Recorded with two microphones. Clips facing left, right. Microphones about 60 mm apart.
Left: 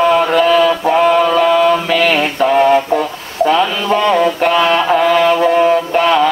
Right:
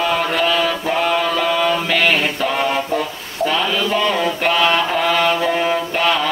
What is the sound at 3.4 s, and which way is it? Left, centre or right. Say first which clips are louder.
Mantra: left 5 dB; left.